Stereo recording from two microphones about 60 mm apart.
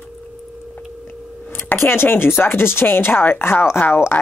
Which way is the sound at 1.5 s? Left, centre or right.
Left.